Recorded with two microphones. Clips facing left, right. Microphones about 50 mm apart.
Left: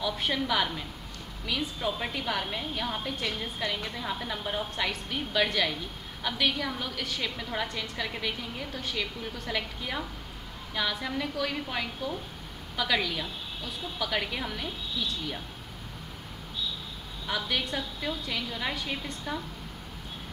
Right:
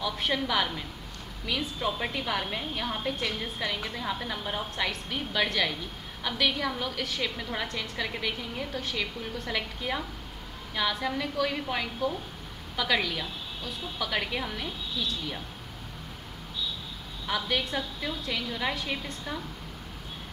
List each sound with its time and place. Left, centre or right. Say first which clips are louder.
0.0 s a woman's voice: even; centre
17.3 s a woman's voice: right 1 dB; centre